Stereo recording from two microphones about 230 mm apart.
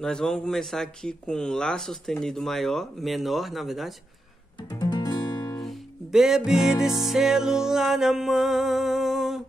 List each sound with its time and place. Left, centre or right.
0.0 s speech: centre
4.6 s guitar: centre
5.6 s music: centre